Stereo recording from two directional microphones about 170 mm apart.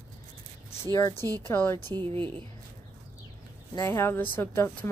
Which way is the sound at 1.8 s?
30° right (ahead or behind).